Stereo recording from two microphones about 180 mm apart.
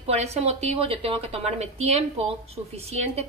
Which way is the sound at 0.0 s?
35° right (ahead or behind).